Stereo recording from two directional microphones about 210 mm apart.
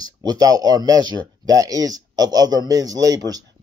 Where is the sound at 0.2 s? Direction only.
15° right (ahead or behind).